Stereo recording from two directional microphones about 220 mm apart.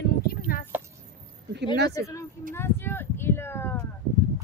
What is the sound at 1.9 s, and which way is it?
Speech, 15° left (ahead or behind).